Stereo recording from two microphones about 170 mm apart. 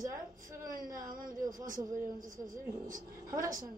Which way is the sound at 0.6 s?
55° right (ahead or behind).